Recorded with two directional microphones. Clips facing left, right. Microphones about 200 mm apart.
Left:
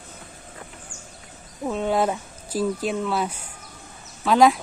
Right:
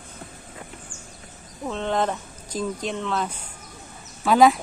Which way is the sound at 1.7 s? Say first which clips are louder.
Left 2 dB; 10° left (ahead or behind).